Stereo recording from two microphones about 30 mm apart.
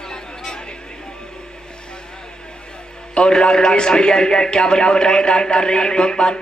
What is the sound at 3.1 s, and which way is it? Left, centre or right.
A man's voice, left.